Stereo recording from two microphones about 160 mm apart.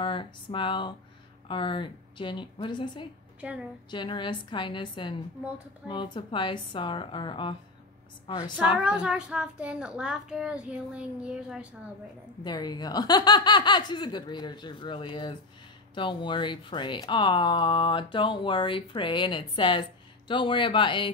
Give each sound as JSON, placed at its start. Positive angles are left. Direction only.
{"t": 0.0, "sound": "speech", "side_deg": 30}
{"t": 3.3, "sound": "a woman's voice", "side_deg": -10}
{"t": 3.9, "sound": "speech", "side_deg": 30}
{"t": 8.7, "sound": "a child's voice", "side_deg": -5}
{"t": 12.4, "sound": "speech", "side_deg": 25}